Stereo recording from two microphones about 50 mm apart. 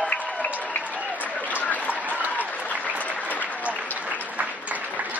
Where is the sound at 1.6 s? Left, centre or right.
Left.